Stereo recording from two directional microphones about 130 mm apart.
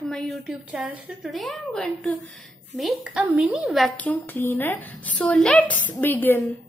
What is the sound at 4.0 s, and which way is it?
A woman's voice, 15° left (ahead or behind).